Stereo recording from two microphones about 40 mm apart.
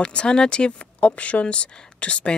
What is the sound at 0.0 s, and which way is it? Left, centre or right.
Speech, left.